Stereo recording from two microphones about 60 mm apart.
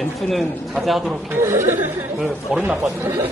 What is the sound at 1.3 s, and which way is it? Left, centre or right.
Speech, right.